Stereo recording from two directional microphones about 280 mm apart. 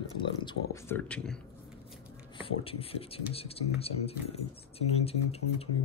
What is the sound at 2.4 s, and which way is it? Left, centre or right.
Speech, centre.